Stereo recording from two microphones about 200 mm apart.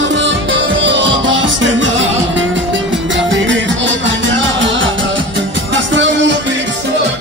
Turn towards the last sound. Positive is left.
turn(degrees=-65)  # may be behind; listen again after turning